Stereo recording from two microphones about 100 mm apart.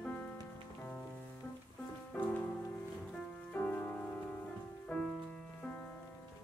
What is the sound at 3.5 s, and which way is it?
Music, 15° left (ahead or behind).